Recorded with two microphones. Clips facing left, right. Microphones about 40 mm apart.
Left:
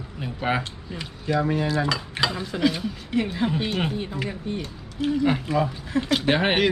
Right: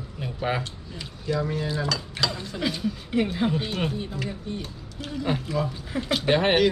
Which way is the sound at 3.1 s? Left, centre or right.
Centre.